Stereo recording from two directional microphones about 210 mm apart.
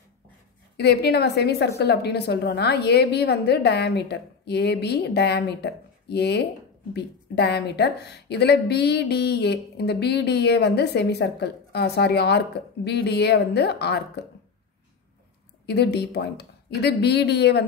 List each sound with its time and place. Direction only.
0.7 s a woman's voice: 50° left (ahead or behind)
15.6 s a woman's voice: 50° left (ahead or behind)